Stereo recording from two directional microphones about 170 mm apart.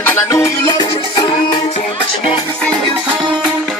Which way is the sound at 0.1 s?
15° left (ahead or behind).